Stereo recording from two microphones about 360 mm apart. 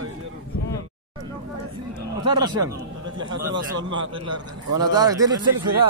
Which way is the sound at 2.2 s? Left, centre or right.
Centre.